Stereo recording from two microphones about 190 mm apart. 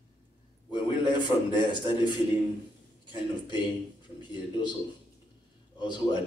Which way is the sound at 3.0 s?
25° left (ahead or behind).